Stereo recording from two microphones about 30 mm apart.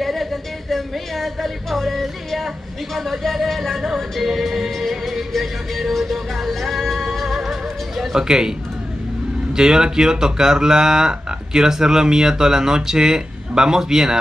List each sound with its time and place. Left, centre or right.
0.0 s speech: centre
3.8 s music: centre
8.2 s speech: right